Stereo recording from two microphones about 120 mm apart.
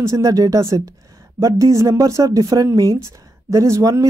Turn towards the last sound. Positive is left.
turn(degrees=-25)  # may be behind; listen again after turning